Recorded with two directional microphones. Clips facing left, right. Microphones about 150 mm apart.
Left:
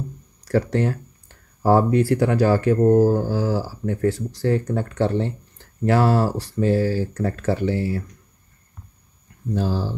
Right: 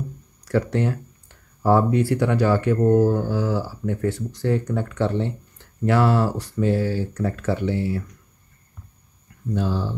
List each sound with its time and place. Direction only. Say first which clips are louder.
0.5 s speech: left 1 dB; 40° left (ahead or behind)
9.5 s speech: left 1 dB; 35° left (ahead or behind)